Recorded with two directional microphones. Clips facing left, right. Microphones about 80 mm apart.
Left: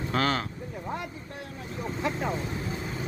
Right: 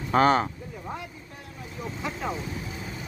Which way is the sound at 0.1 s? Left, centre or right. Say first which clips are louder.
Right 8 dB; right.